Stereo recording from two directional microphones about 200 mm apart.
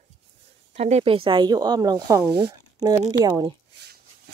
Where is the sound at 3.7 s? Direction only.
55° right (ahead or behind).